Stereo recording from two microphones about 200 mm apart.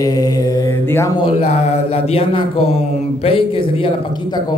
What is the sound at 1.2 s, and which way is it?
Speech, 35° left (ahead or behind).